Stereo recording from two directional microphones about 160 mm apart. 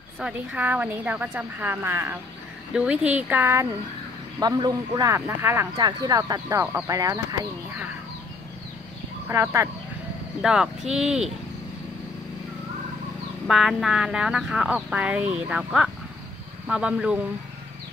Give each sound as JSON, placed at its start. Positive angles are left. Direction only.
{"t": 0.2, "sound": "speech", "side_deg": -10}
{"t": 9.3, "sound": "speech", "side_deg": -20}
{"t": 10.4, "sound": "speech", "side_deg": -5}
{"t": 13.5, "sound": "speech", "side_deg": 0}